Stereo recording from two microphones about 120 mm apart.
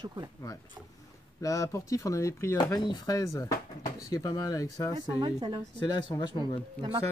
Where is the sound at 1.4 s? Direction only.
30° left (ahead or behind).